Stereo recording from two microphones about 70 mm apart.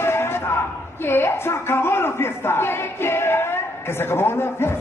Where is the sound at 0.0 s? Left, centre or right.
Left.